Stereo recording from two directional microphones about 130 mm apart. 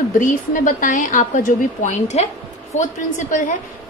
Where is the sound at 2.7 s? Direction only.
80° left.